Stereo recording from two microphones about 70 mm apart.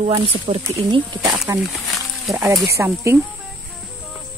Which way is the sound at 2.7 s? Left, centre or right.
Right.